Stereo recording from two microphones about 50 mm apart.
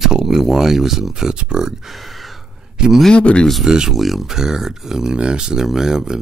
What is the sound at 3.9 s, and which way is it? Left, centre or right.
Speech, centre.